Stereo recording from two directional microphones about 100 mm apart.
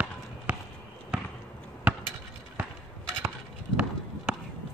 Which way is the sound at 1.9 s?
10° right (ahead or behind).